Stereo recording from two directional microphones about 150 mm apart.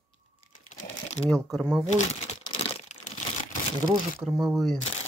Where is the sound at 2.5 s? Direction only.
40° left (ahead or behind).